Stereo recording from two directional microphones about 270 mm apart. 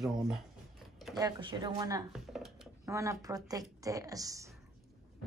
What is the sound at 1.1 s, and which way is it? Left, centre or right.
Speech, centre.